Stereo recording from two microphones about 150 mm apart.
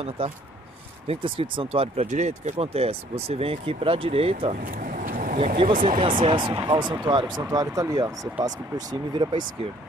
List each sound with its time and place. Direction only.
0.2 s speech: 40° right (ahead or behind)
4.6 s vehicle: 60° right (ahead or behind)
5.7 s speech: 65° right (ahead or behind)
5.9 s speech: 35° right (ahead or behind)